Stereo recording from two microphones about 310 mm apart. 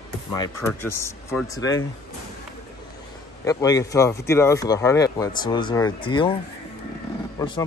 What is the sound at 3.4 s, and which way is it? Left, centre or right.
Speech, centre.